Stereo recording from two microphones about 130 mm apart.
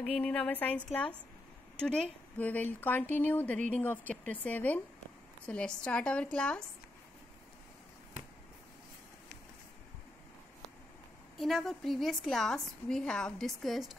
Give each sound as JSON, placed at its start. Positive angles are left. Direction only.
{"t": 0.0, "sound": "a woman's voice", "side_deg": 10}
{"t": 11.3, "sound": "a woman's voice", "side_deg": 0}